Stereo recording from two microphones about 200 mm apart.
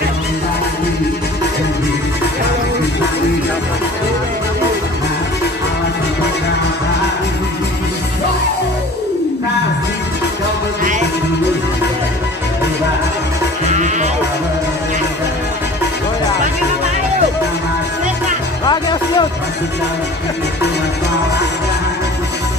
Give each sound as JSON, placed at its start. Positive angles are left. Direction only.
{"t": 13.7, "sound": "music", "side_deg": -35}
{"t": 18.7, "sound": "music", "side_deg": 20}